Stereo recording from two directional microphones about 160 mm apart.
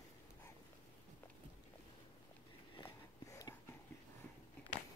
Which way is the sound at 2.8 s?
20° left (ahead or behind).